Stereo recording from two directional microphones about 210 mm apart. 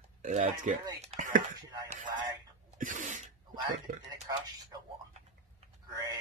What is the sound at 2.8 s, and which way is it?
Sneeze, 35° right (ahead or behind).